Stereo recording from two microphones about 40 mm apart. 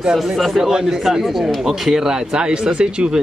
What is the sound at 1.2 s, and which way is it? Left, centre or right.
Speech, centre.